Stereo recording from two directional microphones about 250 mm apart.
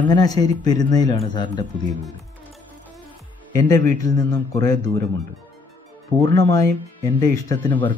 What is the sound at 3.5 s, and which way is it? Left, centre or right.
Speech, centre.